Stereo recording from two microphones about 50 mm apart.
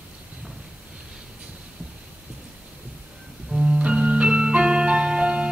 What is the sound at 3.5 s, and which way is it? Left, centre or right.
Music, centre.